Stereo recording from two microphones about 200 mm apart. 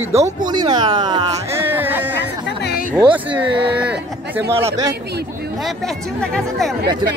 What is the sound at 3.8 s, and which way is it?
Speech, 5° right (ahead or behind).